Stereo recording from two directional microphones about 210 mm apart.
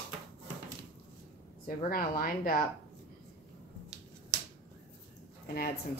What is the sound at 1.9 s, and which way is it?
Speech, 45° left (ahead or behind).